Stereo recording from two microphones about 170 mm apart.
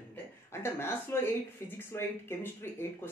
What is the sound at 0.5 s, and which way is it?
Speech, 15° left (ahead or behind).